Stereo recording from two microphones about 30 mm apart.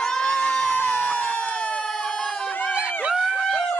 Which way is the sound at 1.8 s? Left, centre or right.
Left.